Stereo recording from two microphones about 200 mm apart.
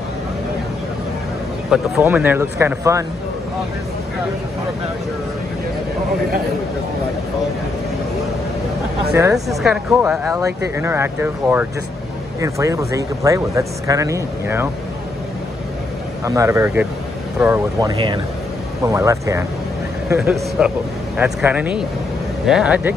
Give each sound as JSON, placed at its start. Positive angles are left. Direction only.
{"t": 1.7, "sound": "speech", "side_deg": -10}
{"t": 9.1, "sound": "speech", "side_deg": -15}
{"t": 9.6, "sound": "speech", "side_deg": 0}
{"t": 10.3, "sound": "speech", "side_deg": -15}
{"t": 16.3, "sound": "speech", "side_deg": -15}
{"t": 20.6, "sound": "speech", "side_deg": -5}